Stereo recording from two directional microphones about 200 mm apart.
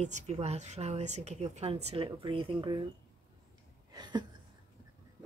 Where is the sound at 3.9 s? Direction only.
20° right (ahead or behind).